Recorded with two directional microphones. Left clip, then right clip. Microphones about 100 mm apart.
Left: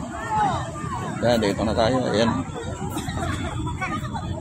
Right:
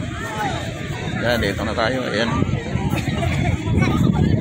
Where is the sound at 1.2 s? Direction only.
80° left.